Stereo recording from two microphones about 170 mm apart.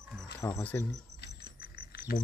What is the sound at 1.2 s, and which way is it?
Keys jangling, 65° left (ahead or behind).